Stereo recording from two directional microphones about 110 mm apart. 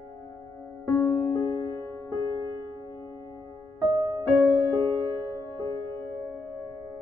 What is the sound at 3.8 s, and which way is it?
Music, 35° right (ahead or behind).